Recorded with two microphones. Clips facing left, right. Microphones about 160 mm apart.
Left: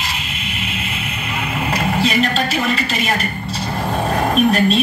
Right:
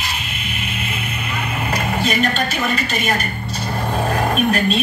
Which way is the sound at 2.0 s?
35° left (ahead or behind).